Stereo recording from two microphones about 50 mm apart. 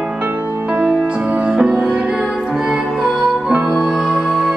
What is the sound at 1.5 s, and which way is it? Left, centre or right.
Music, centre.